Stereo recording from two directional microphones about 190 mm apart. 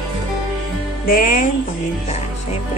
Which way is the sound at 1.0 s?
50° left (ahead or behind).